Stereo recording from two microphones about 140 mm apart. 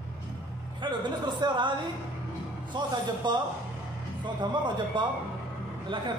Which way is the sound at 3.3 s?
30° right (ahead or behind).